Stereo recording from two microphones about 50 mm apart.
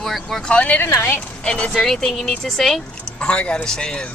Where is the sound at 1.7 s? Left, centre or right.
Centre.